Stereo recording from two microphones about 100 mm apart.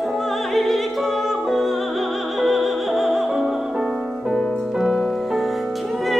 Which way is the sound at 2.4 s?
Centre (ahead or behind).